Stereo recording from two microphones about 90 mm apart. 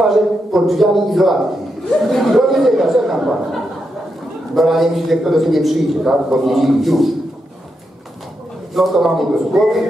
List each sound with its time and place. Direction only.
0.0 s a man's voice: centre (ahead or behind)
4.6 s a man's voice: centre (ahead or behind)
8.7 s a man's voice: centre (ahead or behind)